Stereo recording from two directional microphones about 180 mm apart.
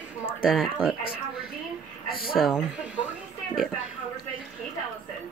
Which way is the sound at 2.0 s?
55° left (ahead or behind).